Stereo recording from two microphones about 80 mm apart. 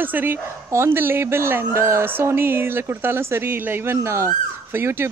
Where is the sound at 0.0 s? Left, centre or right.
Right.